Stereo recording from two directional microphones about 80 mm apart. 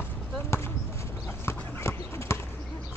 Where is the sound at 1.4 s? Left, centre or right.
Left.